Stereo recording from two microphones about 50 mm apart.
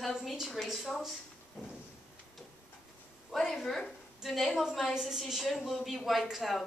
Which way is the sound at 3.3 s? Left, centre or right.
Centre.